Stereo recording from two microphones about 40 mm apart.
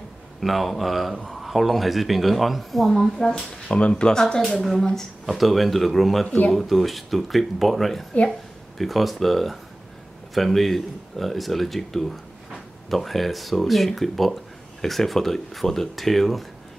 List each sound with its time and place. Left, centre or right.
0.4 s speech: centre
3.6 s speech: left
5.2 s speech: centre
6.2 s speech: left
6.5 s speech: centre